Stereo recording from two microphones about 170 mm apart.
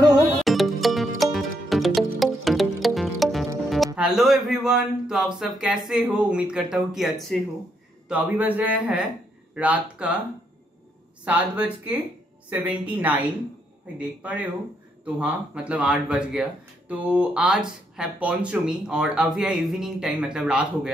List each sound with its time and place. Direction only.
0.4 s music: centre (ahead or behind)
3.7 s a man's voice: centre (ahead or behind)
11.2 s a man's voice: 10° right (ahead or behind)